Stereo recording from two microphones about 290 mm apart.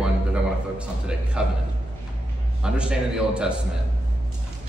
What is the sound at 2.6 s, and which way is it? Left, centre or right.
Speech, centre.